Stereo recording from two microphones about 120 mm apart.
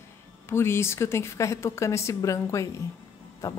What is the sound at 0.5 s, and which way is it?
A woman's voice, 20° left (ahead or behind).